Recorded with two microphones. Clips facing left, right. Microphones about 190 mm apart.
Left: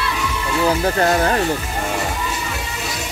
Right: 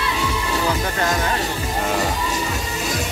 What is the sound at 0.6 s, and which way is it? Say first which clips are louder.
Speech: left 7 dB; 35° left (ahead or behind).